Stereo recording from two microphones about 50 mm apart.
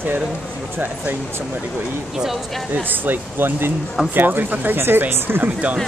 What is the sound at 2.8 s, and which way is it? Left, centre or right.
Speech, right.